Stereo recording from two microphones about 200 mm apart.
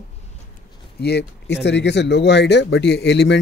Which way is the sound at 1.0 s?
55° left (ahead or behind).